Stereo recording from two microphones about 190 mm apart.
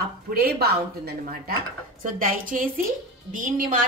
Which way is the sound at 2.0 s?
45° right (ahead or behind).